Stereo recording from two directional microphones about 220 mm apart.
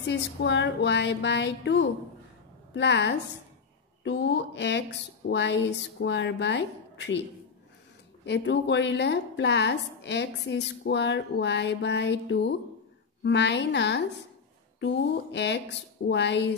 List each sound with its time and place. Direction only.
0.0 s a woman's voice: 50° left (ahead or behind)
8.3 s a woman's voice: 55° left (ahead or behind)
15.3 s a woman's voice: 50° left (ahead or behind)